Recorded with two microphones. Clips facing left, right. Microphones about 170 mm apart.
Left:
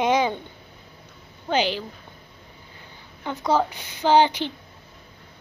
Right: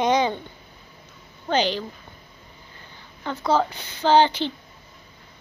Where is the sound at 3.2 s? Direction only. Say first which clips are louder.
Even; 15° left (ahead or behind).